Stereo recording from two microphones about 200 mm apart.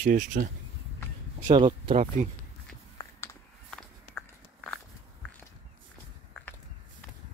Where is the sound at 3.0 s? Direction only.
15° left (ahead or behind).